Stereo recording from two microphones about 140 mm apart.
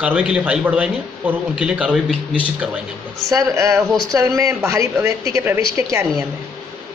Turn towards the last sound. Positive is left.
turn(degrees=-20)  # may be behind; listen again after turning